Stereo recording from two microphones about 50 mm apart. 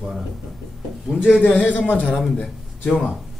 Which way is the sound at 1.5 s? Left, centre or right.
Left.